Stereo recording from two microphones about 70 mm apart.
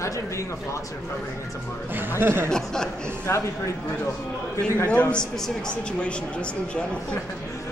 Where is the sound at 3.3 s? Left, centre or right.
Left.